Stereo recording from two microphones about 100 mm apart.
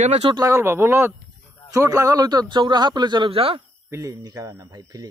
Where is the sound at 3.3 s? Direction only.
70° right (ahead or behind).